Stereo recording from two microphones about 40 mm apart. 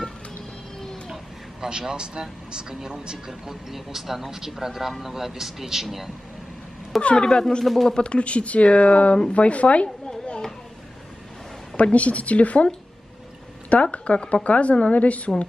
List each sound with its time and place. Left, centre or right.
1.0 s a sound: centre
1.7 s speech: centre
7.0 s speech: left
7.6 s speech: centre
7.9 s speech: left
11.7 s speech: left
13.9 s speech: left